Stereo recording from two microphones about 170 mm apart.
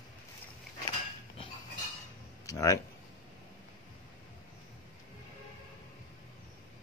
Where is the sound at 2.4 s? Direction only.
20° left (ahead or behind).